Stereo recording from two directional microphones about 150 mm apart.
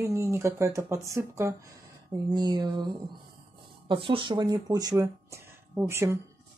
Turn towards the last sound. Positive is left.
turn(degrees=-20)  # may be behind; listen again after turning